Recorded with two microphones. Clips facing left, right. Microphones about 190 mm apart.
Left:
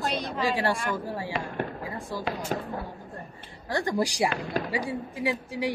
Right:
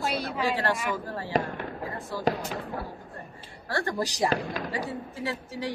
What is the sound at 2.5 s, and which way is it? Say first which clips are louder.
Speech: left 4 dB; 45° left (ahead or behind).